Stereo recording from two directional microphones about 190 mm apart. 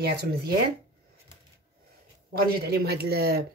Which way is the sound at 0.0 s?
55° right (ahead or behind).